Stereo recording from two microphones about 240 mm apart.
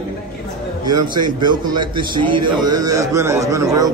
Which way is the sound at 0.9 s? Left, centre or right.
Right.